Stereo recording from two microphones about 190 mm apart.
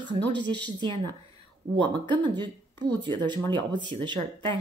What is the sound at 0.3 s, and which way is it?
Speech, 70° right (ahead or behind).